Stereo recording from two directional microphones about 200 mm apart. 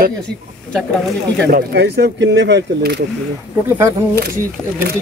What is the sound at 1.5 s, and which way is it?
Speech, 55° right (ahead or behind).